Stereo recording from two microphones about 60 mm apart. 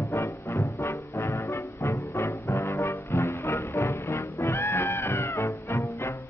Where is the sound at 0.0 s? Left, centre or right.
Left.